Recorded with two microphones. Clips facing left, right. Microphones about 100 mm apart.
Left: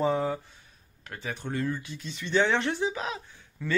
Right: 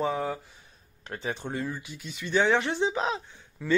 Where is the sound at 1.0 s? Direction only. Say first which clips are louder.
Right 3 dB; 30° right (ahead or behind).